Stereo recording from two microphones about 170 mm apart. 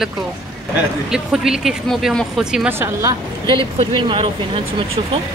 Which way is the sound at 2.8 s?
15° right (ahead or behind).